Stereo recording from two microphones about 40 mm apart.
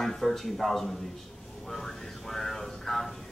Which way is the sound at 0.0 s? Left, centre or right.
Centre.